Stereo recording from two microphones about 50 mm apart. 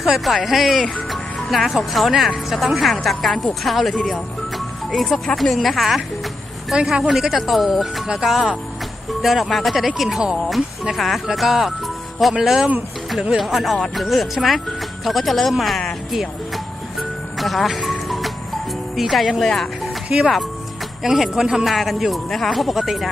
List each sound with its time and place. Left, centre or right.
0.2 s speech: centre
3.9 s speech: centre
4.9 s speech: centre
17.4 s music: centre
18.9 s speech: centre
19.4 s speech: centre
20.1 s speech: centre